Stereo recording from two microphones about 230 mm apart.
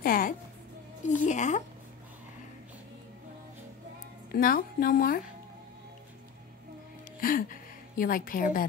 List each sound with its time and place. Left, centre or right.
0.0 s speech: left
4.3 s speech: left
7.2 s music: left
8.0 s speech: left